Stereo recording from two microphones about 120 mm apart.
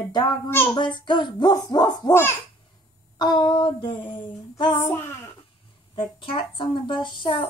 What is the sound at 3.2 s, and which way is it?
A child's voice, 40° left (ahead or behind).